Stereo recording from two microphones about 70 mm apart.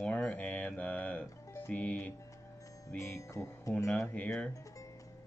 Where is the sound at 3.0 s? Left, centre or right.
Left.